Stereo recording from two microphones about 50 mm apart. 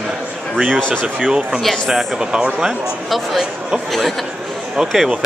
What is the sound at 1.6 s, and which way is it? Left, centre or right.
Speech, centre.